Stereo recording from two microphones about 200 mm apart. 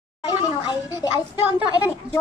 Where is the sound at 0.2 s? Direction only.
20° left (ahead or behind).